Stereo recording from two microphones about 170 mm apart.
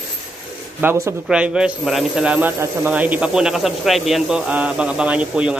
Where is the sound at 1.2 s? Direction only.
5° right (ahead or behind).